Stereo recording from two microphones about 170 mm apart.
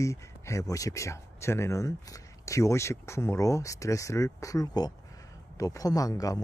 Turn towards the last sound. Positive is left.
turn(degrees=20)  # may be behind; listen again after turning